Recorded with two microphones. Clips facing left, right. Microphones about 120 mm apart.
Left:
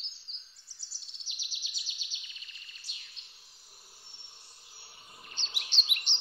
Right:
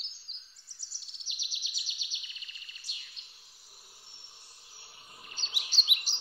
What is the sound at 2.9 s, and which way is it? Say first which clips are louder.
Bird: right 2 dB; 15° right (ahead or behind).